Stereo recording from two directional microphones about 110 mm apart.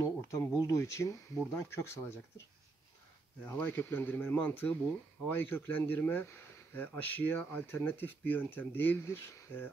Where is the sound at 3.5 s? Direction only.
20° left (ahead or behind).